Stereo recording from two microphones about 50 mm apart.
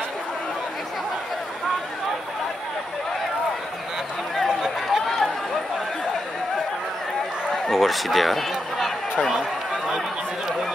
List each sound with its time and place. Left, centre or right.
4.4 s a sound: centre
5.0 s run: centre
7.5 s speech: centre
9.3 s run: centre